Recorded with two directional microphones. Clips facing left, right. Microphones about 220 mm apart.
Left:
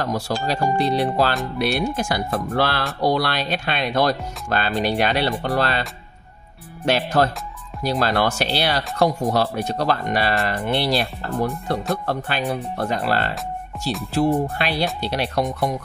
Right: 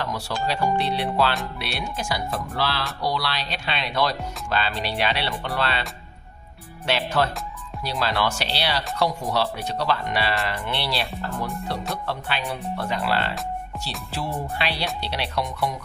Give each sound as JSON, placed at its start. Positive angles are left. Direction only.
{"t": 0.5, "sound": "speech", "side_deg": 45}
{"t": 6.9, "sound": "speech", "side_deg": 45}